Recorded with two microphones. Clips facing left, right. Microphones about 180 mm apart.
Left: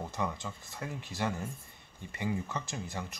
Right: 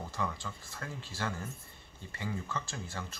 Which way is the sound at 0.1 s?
20° left (ahead or behind).